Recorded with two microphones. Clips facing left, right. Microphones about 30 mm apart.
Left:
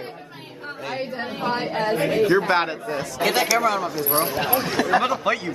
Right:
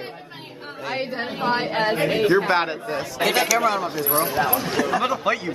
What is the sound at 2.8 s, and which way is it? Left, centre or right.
Speech, centre.